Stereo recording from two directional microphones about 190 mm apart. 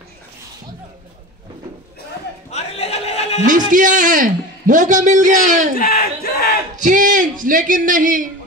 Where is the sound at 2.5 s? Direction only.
35° left (ahead or behind).